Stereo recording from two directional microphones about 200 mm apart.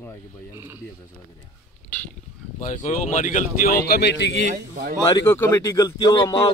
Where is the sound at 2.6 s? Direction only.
40° left (ahead or behind).